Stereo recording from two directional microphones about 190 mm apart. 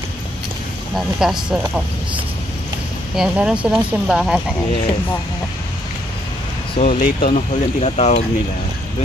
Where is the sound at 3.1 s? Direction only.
5° right (ahead or behind).